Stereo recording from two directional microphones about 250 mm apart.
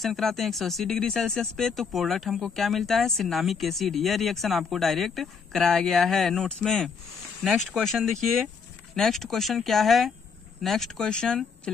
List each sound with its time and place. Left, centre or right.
0.0 s speech: centre